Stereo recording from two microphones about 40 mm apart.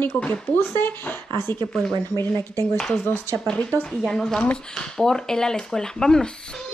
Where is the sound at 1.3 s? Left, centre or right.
Left.